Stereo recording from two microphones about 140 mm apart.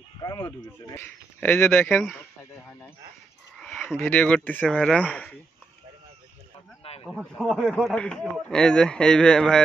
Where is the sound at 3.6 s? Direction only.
Centre (ahead or behind).